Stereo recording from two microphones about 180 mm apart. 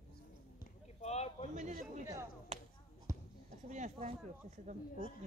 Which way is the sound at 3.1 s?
15° right (ahead or behind).